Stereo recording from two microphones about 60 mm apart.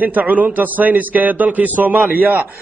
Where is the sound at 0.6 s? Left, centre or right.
Right.